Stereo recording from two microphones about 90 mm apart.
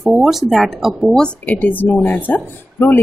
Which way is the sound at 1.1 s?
15° left (ahead or behind).